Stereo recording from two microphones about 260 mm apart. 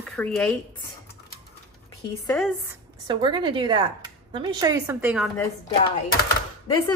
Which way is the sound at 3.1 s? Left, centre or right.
Centre.